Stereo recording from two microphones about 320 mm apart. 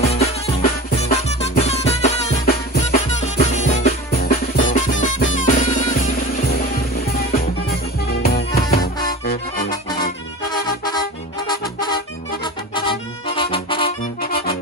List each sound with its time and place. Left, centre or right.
0.0 s music: centre
8.1 s music: left
10.5 s music: centre